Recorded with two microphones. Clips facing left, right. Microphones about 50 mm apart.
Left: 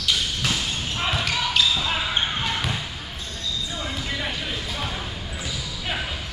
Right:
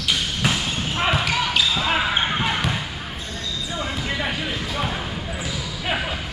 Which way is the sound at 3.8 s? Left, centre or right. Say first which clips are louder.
Right 5 dB; centre.